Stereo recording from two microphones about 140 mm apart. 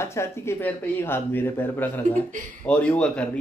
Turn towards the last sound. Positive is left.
turn(degrees=10)  # may be behind; listen again after turning